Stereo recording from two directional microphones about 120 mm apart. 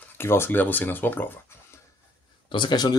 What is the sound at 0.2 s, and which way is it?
Speech, 20° left (ahead or behind).